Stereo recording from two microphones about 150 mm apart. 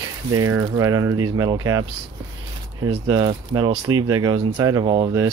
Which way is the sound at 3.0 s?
25° right (ahead or behind).